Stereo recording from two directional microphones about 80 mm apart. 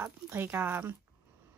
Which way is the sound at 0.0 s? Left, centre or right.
Right.